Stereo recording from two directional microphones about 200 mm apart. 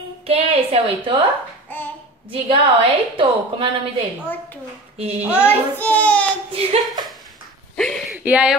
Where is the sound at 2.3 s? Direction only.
25° right (ahead or behind).